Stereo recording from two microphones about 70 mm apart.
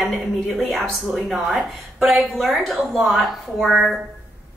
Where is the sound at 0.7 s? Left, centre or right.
Centre.